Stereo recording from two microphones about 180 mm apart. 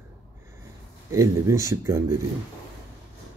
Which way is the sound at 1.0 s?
15° right (ahead or behind).